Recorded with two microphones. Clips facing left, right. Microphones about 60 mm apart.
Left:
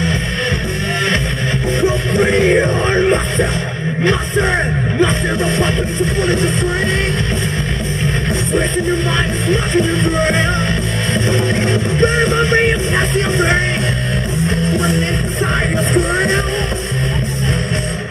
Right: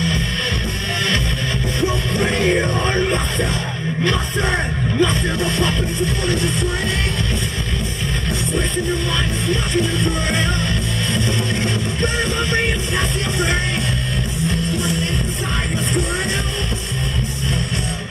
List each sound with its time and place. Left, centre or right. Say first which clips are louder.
1.8 s music: left 5 dB; left
4.0 s speech: left 5 dB; left
6.2 s music: left 5 dB; left
9.5 s music: left 5 dB; left